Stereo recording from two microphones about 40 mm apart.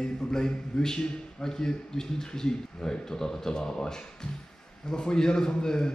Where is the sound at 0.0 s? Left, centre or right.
Centre.